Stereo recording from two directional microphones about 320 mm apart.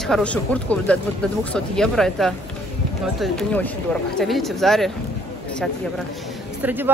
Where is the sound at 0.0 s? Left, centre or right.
Centre.